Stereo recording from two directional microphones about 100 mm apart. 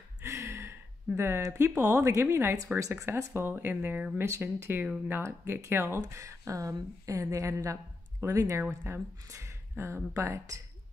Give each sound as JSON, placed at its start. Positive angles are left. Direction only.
{"t": 0.2, "sound": "speech", "side_deg": -30}
{"t": 4.2, "sound": "speech", "side_deg": -25}